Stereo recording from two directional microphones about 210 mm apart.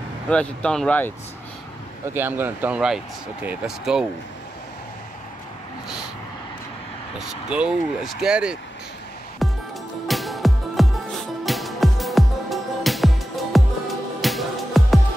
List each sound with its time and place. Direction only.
0.3 s speech: 5° left (ahead or behind)
2.1 s speech: 10° right (ahead or behind)
7.4 s speech: 5° right (ahead or behind)
9.4 s music: centre (ahead or behind)